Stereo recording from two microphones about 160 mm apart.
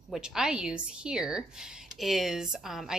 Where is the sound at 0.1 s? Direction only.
5° right (ahead or behind).